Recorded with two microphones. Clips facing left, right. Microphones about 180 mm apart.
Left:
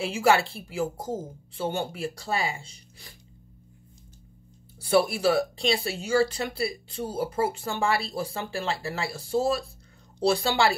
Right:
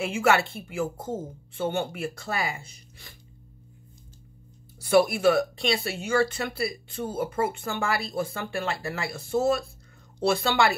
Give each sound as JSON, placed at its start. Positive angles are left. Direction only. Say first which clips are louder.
{"t": 0.0, "sound": "speech", "louder": "left 1 dB", "side_deg": 35}
{"t": 4.7, "sound": "speech", "louder": "right 2 dB", "side_deg": 30}